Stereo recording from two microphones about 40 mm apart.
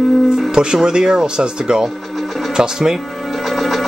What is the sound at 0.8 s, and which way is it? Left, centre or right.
Speech, centre.